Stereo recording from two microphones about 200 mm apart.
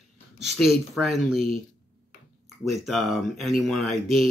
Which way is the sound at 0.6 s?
Centre (ahead or behind).